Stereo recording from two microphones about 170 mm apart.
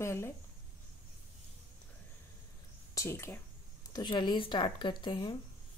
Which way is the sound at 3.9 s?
25° left (ahead or behind).